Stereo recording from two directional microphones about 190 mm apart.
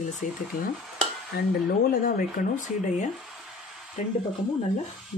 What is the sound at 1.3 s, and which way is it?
Dishes, 55° left (ahead or behind).